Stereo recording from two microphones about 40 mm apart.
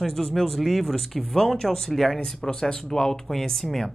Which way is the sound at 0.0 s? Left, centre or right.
Centre.